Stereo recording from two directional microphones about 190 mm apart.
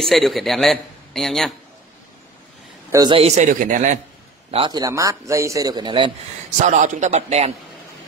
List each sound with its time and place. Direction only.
0.0 s a man's voice: centre (ahead or behind)
2.9 s a man's voice: 20° right (ahead or behind)
3.2 s a man's voice: 35° right (ahead or behind)
4.5 s a man's voice: 25° right (ahead or behind)
6.6 s a man's voice: 40° right (ahead or behind)